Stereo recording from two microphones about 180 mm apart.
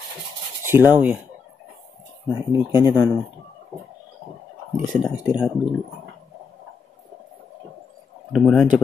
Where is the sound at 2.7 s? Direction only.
15° right (ahead or behind).